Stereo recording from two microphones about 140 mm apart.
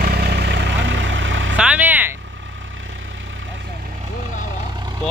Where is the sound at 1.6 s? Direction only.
10° right (ahead or behind).